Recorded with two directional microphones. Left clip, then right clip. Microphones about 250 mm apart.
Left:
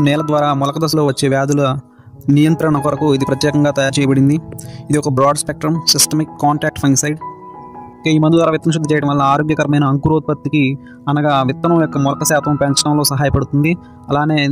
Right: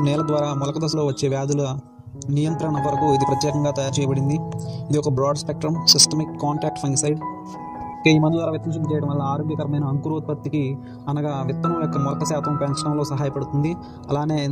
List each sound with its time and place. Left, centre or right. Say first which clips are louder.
0.0 s speech: left 7 dB; left
8.0 s speech: left 3 dB; centre
8.3 s speech: left 10 dB; left